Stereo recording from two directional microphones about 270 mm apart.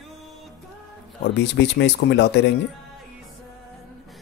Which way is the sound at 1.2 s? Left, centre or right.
Left.